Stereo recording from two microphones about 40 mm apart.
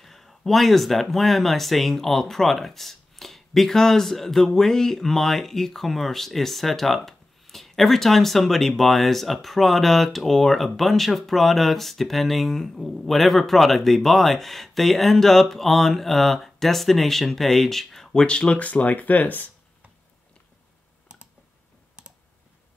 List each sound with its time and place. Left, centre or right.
0.0 s speech: centre
18.2 s speech: left
18.6 s speech: left